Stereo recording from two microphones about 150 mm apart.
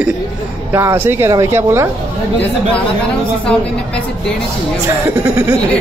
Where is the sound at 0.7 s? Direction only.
15° right (ahead or behind).